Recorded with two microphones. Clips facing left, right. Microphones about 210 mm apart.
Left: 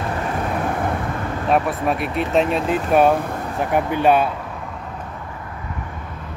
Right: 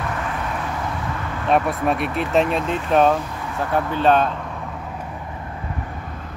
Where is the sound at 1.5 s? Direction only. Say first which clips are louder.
Even; centre (ahead or behind).